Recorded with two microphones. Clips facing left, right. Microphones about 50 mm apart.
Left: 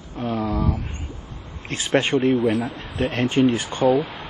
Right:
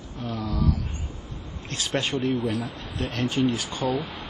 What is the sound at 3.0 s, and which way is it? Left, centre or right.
Speech, left.